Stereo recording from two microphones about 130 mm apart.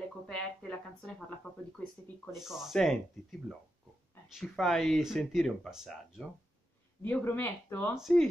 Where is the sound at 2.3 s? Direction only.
Centre (ahead or behind).